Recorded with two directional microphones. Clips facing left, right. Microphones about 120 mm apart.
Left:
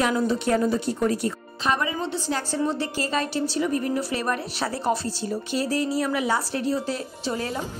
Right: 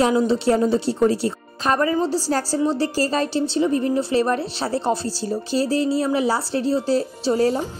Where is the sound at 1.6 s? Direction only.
40° right (ahead or behind).